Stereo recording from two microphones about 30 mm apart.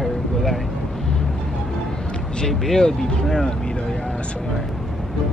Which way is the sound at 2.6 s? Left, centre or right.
Centre.